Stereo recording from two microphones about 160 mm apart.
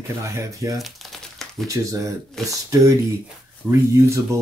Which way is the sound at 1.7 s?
20° right (ahead or behind).